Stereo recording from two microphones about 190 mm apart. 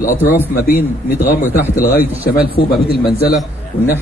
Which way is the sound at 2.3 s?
50° left (ahead or behind).